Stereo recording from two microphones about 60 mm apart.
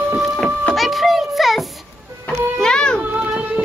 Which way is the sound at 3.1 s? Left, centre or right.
Right.